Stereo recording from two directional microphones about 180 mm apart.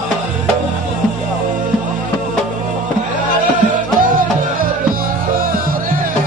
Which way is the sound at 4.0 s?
50° right (ahead or behind).